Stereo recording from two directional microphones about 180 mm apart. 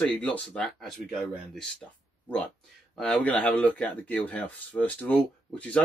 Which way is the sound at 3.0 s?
5° left (ahead or behind).